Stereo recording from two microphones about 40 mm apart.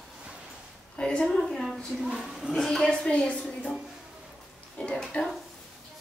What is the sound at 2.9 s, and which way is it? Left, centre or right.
Speech, left.